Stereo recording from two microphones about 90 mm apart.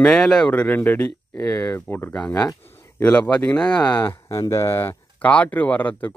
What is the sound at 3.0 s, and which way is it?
Speech, 15° left (ahead or behind).